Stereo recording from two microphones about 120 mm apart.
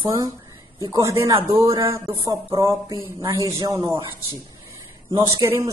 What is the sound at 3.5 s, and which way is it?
Speech, 40° right (ahead or behind).